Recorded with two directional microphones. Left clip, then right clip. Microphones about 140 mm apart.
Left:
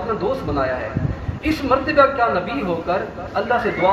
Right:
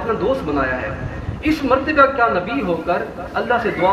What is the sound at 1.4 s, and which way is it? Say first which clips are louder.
A man's voice: right 2 dB; 40° right (ahead or behind).